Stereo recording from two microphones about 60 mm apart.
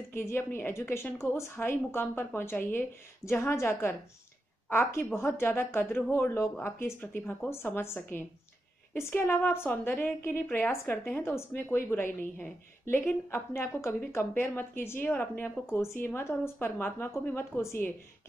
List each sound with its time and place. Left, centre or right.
0.1 s a woman's voice: left